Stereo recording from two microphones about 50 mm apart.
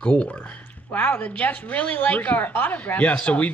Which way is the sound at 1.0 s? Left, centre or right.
Left.